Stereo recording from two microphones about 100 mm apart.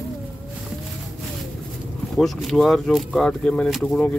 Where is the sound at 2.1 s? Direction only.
Centre (ahead or behind).